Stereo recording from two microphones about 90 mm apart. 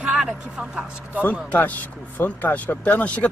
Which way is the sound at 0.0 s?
10° right (ahead or behind).